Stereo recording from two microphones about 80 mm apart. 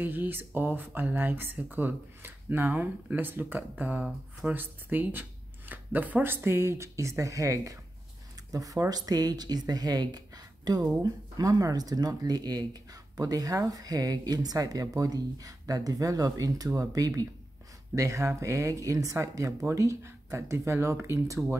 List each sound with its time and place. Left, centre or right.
0.0 s speech: right